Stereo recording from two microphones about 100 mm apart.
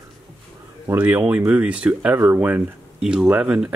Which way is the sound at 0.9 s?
20° right (ahead or behind).